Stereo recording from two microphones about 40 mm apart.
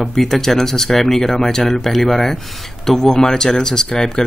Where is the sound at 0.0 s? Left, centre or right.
Centre.